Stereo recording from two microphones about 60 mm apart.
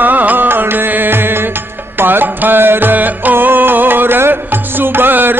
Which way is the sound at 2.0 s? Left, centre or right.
Right.